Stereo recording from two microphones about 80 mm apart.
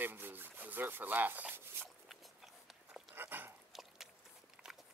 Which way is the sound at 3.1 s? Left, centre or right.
Right.